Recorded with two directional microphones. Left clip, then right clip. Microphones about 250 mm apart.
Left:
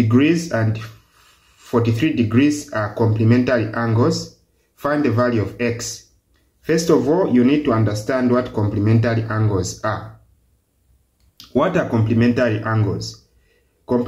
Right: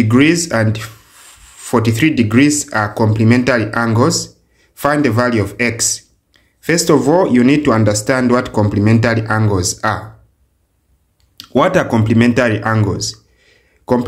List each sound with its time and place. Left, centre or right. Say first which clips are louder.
0.1 s speech: right 6 dB; right
11.3 s speech: right 6 dB; right